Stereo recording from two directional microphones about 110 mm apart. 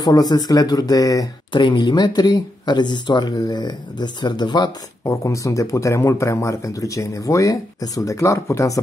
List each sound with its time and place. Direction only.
0.0 s speech: 35° left (ahead or behind)
1.5 s speech: 45° left (ahead or behind)
5.0 s speech: 30° left (ahead or behind)